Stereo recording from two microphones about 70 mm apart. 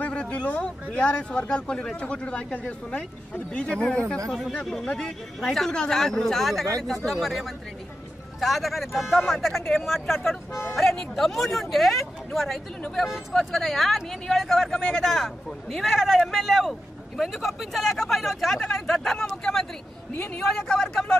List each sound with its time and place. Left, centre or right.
0.0 s speech: centre
4.3 s speech: centre